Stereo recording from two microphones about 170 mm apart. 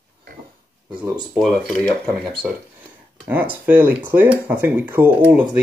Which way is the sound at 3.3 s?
10° right (ahead or behind).